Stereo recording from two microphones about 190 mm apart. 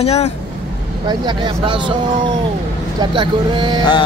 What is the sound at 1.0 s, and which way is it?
Speech, 25° right (ahead or behind).